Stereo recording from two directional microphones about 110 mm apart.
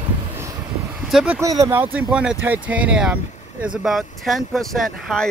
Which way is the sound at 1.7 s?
15° right (ahead or behind).